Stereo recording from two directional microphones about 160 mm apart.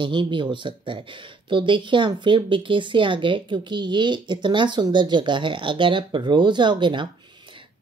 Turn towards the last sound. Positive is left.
turn(degrees=-30)  # may be behind; listen again after turning